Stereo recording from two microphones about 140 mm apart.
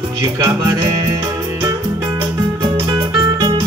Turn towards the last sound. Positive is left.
turn(degrees=-30)  # may be behind; listen again after turning